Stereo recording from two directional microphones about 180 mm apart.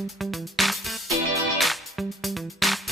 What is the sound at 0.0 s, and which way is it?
Speech, centre (ahead or behind).